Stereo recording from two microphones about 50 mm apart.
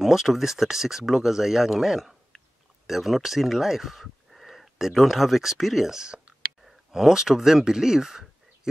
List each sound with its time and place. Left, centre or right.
0.0 s speech: centre